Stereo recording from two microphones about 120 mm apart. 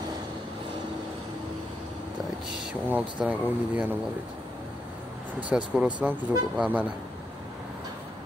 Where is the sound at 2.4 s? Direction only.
5° right (ahead or behind).